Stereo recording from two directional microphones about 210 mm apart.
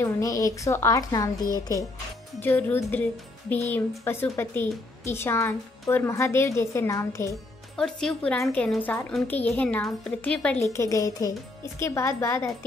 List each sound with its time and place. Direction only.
0.0 s a woman's voice: 15° left (ahead or behind)
7.7 s a woman's voice: 5° left (ahead or behind)